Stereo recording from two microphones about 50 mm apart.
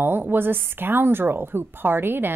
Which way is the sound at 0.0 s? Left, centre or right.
Right.